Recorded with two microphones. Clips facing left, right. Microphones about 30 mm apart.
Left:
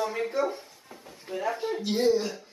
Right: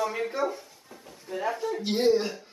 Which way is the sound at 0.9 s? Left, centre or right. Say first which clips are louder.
Even; centre.